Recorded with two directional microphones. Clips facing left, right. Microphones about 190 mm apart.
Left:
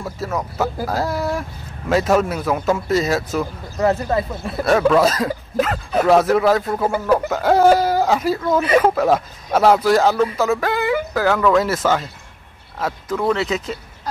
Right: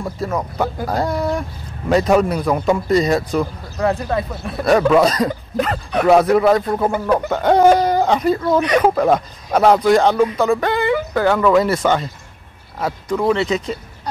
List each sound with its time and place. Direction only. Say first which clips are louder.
0.0 s speech: right 2 dB; centre (ahead or behind)